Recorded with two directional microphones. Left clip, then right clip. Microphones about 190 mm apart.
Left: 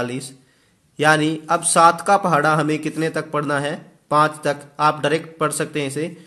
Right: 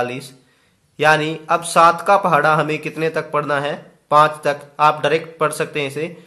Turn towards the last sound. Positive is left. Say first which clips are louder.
# right 2 dB
turn(degrees=25)  # may be behind; listen again after turning